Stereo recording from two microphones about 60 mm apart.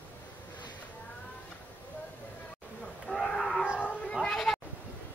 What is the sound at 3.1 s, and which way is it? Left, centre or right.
Wild animals, centre.